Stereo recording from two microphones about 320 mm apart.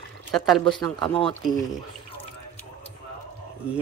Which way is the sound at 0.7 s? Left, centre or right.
Centre.